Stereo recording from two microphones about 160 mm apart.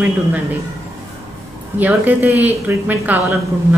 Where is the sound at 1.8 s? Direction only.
10° right (ahead or behind).